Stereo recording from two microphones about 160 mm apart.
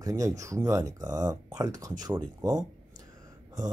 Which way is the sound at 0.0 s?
20° right (ahead or behind).